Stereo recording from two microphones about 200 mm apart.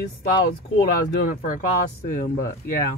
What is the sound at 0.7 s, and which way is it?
Speech, 45° left (ahead or behind).